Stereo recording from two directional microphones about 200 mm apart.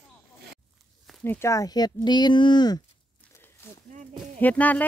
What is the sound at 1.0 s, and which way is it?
Speech, 10° left (ahead or behind).